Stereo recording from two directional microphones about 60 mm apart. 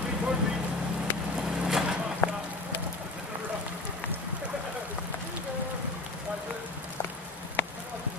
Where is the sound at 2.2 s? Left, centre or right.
Left.